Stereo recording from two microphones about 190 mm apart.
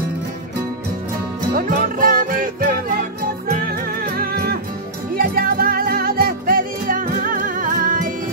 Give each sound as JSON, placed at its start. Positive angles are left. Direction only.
{"t": 1.5, "sound": "music", "side_deg": -50}